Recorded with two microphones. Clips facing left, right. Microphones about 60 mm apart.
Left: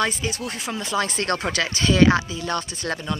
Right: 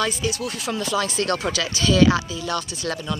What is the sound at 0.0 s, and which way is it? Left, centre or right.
Speech, left.